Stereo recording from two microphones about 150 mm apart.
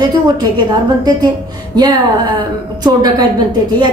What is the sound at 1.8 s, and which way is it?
A woman's voice, 25° right (ahead or behind).